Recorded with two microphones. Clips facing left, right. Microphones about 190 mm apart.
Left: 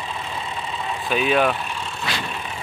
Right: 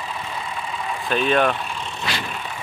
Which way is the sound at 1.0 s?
5° left (ahead or behind).